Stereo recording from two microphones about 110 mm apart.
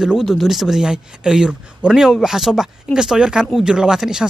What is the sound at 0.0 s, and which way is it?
Speech, centre (ahead or behind).